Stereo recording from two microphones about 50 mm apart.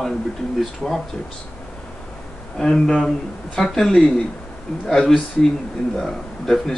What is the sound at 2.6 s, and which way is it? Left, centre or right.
Speech, centre.